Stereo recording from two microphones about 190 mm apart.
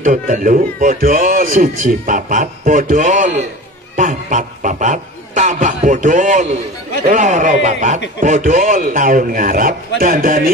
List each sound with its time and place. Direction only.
0.0 s speech: 45° right (ahead or behind)
3.9 s snicker: 40° right (ahead or behind)
7.1 s a man's voice: 40° right (ahead or behind)